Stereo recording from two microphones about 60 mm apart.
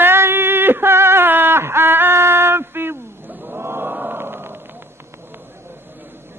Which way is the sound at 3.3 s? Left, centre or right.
Right.